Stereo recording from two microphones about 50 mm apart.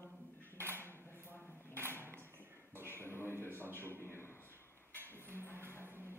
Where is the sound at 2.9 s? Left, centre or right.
Left.